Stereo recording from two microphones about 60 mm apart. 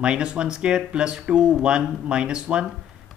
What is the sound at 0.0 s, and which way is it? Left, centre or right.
Speech, centre.